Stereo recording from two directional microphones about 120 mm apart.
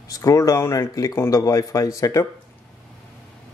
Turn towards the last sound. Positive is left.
turn(degrees=25)  # may be behind; listen again after turning